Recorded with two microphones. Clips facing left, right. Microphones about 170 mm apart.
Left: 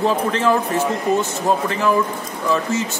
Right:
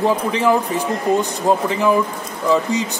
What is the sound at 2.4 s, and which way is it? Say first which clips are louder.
Speech: right 3 dB; 15° right (ahead or behind).